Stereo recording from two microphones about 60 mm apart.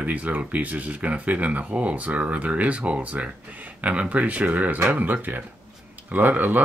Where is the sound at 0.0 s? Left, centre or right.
Right.